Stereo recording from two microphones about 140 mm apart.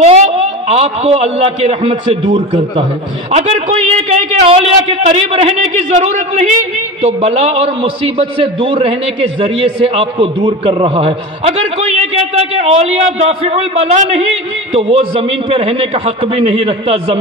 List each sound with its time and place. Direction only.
0.0 s a man's voice: 50° right (ahead or behind)
3.3 s a man's voice: 50° right (ahead or behind)